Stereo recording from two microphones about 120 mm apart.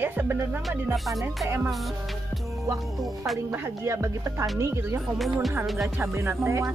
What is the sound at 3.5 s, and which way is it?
Speech, 25° right (ahead or behind).